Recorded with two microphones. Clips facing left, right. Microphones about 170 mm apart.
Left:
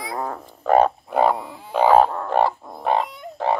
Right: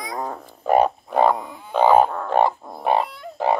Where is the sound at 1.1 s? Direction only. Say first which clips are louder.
Right 1 dB; 5° left (ahead or behind).